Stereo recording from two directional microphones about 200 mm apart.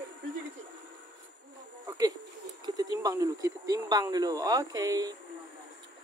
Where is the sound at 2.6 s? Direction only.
20° right (ahead or behind).